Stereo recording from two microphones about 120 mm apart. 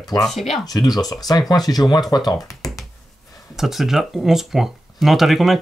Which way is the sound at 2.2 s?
30° left (ahead or behind).